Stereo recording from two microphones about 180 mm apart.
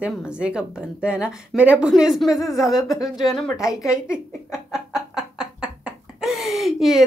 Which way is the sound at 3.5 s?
15° left (ahead or behind).